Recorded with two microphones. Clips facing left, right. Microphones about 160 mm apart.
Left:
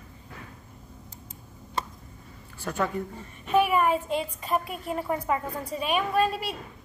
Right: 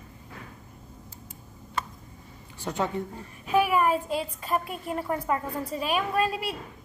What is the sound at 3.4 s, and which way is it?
A woman's voice, centre (ahead or behind).